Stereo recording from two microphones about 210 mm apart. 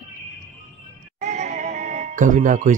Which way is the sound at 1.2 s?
35° right (ahead or behind).